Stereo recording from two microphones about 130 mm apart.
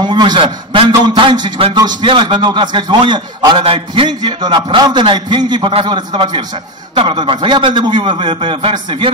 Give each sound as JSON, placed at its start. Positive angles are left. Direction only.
{"t": 0.0, "sound": "a man's voice", "side_deg": -35}